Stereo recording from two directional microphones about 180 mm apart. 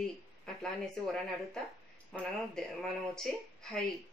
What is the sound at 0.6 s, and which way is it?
Speech, 5° left (ahead or behind).